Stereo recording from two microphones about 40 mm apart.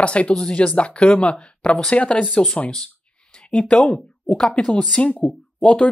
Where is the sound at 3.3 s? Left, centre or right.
Left.